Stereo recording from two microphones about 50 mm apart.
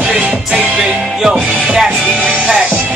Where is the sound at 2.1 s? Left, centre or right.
Right.